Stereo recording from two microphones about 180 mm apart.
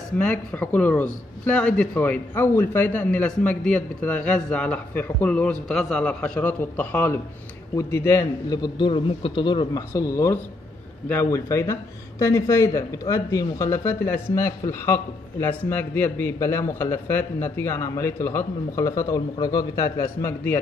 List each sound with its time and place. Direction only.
0.2 s a man's voice: 5° left (ahead or behind)